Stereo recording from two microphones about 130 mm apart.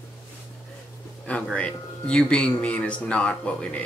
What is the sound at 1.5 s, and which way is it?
Speech, 10° left (ahead or behind).